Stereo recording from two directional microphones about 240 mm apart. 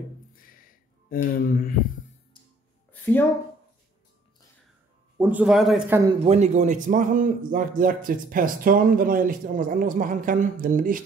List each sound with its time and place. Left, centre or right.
1.1 s music: left
2.9 s a sound: centre
5.1 s a man's voice: centre
6.2 s speech: right